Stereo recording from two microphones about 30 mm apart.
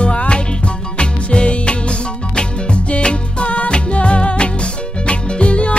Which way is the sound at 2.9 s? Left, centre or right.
Left.